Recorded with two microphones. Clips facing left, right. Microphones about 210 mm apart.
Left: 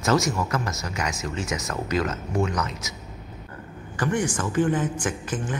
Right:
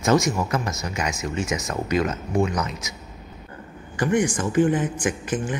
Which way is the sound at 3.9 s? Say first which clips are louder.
Right 4 dB; 15° right (ahead or behind).